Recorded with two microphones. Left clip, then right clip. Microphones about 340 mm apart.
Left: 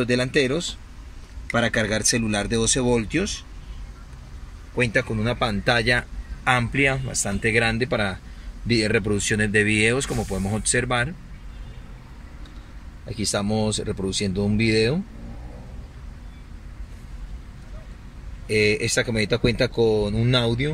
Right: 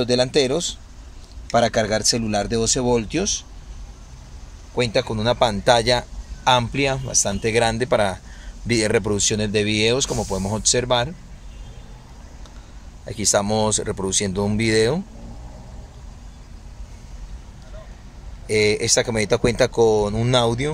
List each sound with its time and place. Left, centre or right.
0.0 s speech: centre
4.7 s speech: centre
13.1 s speech: right
14.3 s speech: right
14.6 s speech: right
18.5 s speech: centre
19.7 s speech: right
20.2 s speech: centre